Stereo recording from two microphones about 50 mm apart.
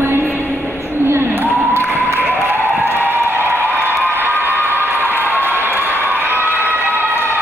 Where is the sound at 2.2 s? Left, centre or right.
Right.